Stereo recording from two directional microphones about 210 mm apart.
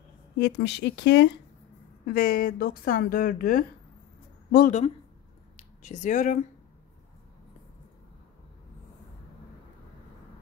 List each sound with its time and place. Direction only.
0.4 s speech: 55° left (ahead or behind)
2.1 s speech: 45° left (ahead or behind)
5.6 s speech: 35° left (ahead or behind)